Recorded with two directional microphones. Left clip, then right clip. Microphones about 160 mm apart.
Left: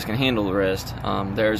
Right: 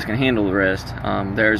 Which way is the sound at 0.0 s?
20° left (ahead or behind).